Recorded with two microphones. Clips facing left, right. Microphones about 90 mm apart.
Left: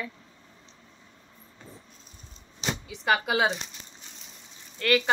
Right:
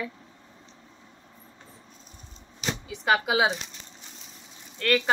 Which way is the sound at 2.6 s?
Centre (ahead or behind).